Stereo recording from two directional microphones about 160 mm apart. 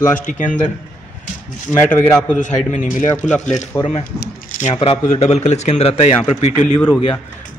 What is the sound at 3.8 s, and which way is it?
Speech, 35° left (ahead or behind).